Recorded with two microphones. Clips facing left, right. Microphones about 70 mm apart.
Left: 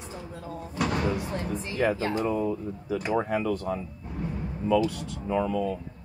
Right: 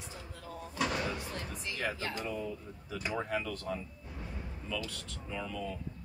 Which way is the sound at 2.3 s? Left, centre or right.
Left.